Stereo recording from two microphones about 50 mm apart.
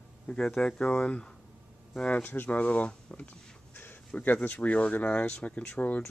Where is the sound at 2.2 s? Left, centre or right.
Left.